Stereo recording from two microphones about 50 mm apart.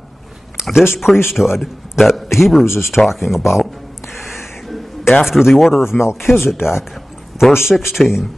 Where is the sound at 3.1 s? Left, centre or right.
Centre.